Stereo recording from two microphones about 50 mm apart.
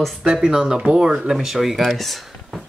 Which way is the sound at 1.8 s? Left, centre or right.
Centre.